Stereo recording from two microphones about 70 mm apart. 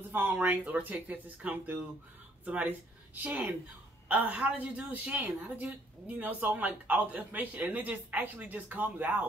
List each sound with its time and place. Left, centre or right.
0.1 s a woman's voice: right